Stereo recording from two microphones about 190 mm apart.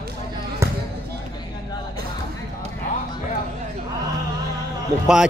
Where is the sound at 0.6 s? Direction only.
15° right (ahead or behind).